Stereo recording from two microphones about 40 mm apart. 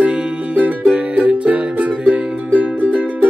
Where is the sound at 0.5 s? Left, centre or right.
Right.